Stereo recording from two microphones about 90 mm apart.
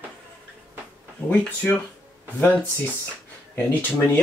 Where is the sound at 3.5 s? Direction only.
20° left (ahead or behind).